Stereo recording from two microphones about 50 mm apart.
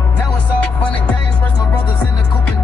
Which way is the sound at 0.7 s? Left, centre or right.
Left.